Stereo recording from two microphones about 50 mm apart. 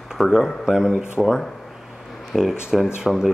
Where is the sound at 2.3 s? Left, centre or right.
Centre.